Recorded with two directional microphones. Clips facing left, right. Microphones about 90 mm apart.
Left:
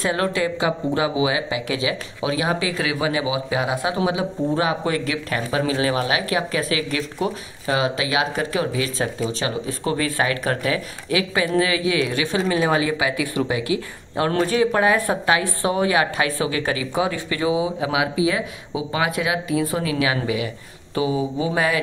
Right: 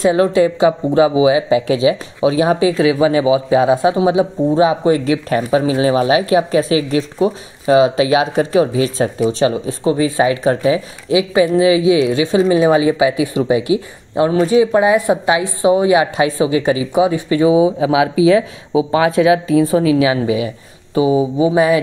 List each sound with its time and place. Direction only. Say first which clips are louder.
0.0 s speech: right 9 dB; 25° right (ahead or behind)
9.8 s speech: right 8 dB; 20° right (ahead or behind)